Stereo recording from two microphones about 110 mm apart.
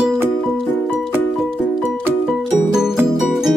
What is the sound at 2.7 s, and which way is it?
Music, 5° right (ahead or behind).